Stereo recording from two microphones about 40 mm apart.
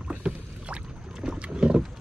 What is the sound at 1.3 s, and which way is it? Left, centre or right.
Boat, right.